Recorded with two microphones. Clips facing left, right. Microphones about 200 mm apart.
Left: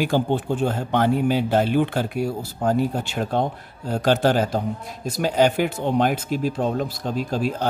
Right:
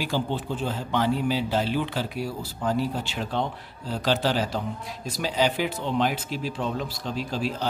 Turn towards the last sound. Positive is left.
turn(degrees=50)  # may be behind; listen again after turning